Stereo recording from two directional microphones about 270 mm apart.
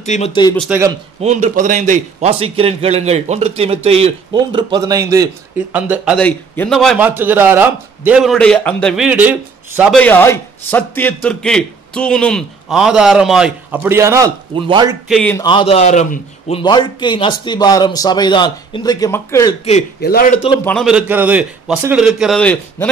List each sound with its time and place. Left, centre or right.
0.0 s a man's voice: left
0.6 s speech: centre
1.2 s a man's voice: right
15.0 s a man's voice: centre
20.0 s a man's voice: left
20.6 s a man's voice: centre